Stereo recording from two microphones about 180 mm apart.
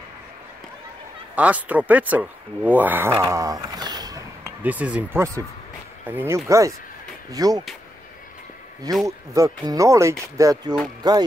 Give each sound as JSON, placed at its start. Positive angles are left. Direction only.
{"t": 1.3, "sound": "speech", "side_deg": -10}
{"t": 4.6, "sound": "speech", "side_deg": -5}
{"t": 9.0, "sound": "speech", "side_deg": -20}